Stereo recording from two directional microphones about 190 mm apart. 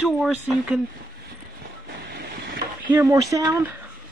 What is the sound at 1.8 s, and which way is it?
Vehicle, 55° right (ahead or behind).